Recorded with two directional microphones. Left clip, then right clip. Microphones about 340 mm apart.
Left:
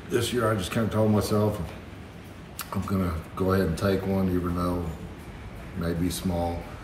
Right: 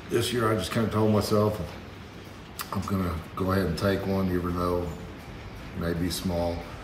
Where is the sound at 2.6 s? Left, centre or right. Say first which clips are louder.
Even; centre.